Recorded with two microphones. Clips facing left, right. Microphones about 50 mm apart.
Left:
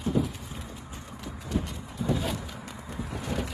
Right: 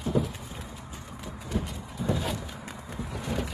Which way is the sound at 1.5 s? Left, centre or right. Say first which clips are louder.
Left 1 dB; centre.